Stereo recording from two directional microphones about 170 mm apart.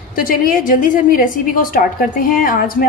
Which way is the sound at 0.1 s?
55° left (ahead or behind).